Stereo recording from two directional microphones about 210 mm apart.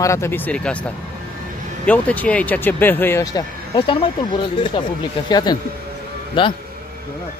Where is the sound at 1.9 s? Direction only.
5° left (ahead or behind); by 6.5 s 25° left (ahead or behind).